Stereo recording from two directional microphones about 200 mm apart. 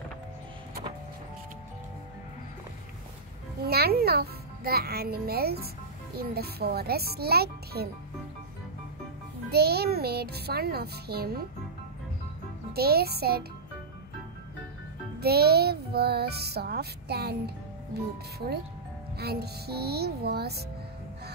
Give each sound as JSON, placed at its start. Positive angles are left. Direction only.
{"t": 3.6, "sound": "a child's voice", "side_deg": -50}
{"t": 6.1, "sound": "music", "side_deg": -50}
{"t": 9.5, "sound": "music", "side_deg": -55}
{"t": 12.7, "sound": "music", "side_deg": -50}
{"t": 15.1, "sound": "music", "side_deg": -50}
{"t": 19.1, "sound": "music", "side_deg": -55}